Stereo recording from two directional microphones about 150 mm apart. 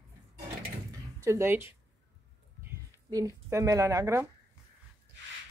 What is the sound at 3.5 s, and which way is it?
Speech, 20° right (ahead or behind).